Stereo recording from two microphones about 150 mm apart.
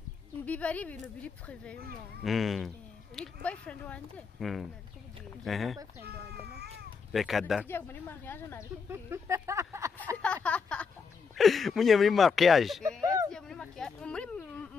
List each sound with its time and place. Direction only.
0.5 s speech: 10° left (ahead or behind)
6.4 s cat: 90° right
7.1 s speech: centre (ahead or behind)
7.6 s speech: 15° left (ahead or behind)
8.8 s speech: 15° right (ahead or behind)
10.1 s a sound: 10° left (ahead or behind)
11.3 s speech: centre (ahead or behind)
13.3 s a sound: 5° left (ahead or behind)